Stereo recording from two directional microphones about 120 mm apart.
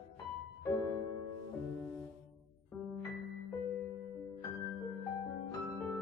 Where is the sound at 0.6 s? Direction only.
25° left (ahead or behind).